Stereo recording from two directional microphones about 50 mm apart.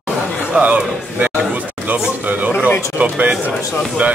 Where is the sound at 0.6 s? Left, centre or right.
Right.